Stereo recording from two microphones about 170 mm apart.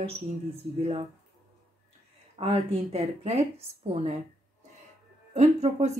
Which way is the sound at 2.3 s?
35° right (ahead or behind).